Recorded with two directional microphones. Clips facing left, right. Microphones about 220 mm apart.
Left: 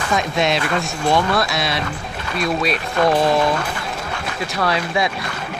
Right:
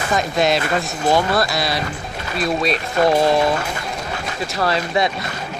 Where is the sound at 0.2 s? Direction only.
Centre (ahead or behind).